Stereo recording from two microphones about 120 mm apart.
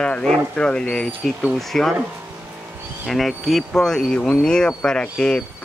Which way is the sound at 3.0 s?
Centre (ahead or behind).